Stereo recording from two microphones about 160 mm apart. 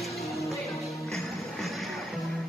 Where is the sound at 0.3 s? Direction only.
20° left (ahead or behind).